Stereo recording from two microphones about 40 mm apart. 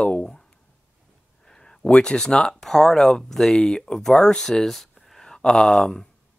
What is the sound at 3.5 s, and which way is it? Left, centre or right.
Speech, left.